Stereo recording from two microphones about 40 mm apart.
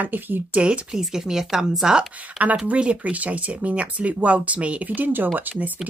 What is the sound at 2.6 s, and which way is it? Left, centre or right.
Speech, right.